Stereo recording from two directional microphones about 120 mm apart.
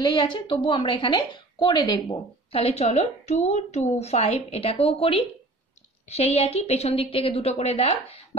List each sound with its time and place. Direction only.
0.0 s a woman's voice: 35° left (ahead or behind)
2.5 s a woman's voice: 60° left (ahead or behind)